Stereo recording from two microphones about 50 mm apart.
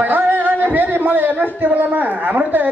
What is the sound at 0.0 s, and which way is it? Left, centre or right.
A man's voice, right.